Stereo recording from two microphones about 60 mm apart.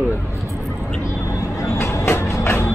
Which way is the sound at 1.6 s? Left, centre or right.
Left.